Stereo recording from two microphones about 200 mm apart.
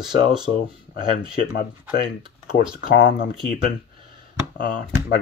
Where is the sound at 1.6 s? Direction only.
45° left (ahead or behind).